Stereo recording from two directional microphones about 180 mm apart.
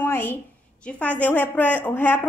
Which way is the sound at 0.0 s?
10° left (ahead or behind).